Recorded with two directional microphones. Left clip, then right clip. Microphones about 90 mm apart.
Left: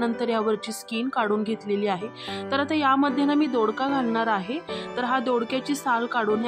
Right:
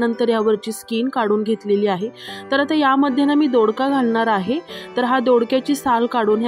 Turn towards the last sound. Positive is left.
turn(degrees=-60)  # may be behind; listen again after turning